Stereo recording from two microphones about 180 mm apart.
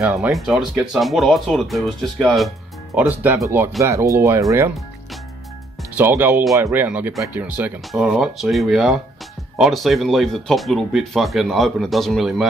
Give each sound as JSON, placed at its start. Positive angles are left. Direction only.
{"t": 0.0, "sound": "speech", "side_deg": -15}
{"t": 0.3, "sound": "speech", "side_deg": 0}
{"t": 2.9, "sound": "speech", "side_deg": -10}
{"t": 5.9, "sound": "speech", "side_deg": -10}